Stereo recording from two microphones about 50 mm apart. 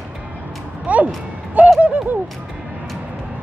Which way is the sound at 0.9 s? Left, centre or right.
Right.